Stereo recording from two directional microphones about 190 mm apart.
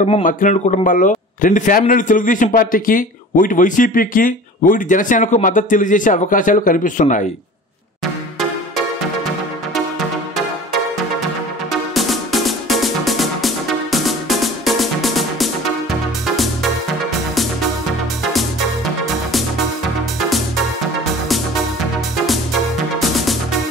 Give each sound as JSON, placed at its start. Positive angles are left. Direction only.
{"t": 0.1, "sound": "a man's voice", "side_deg": 45}
{"t": 11.9, "sound": "music", "side_deg": 0}
{"t": 20.2, "sound": "music", "side_deg": 0}
{"t": 22.9, "sound": "music", "side_deg": 0}